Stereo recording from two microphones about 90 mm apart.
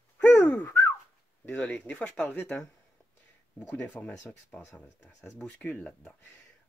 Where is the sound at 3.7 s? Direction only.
15° left (ahead or behind).